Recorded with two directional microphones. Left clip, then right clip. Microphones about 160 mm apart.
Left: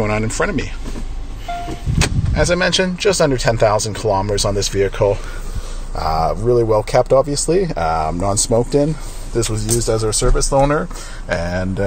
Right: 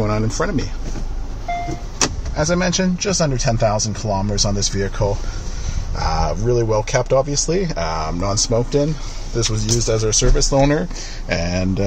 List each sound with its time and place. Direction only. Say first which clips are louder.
0.0 s speech: left 2 dB; centre (ahead or behind)
2.3 s speech: left 5 dB; 5° left (ahead or behind)
6.6 s speech: left 4 dB; 15° left (ahead or behind)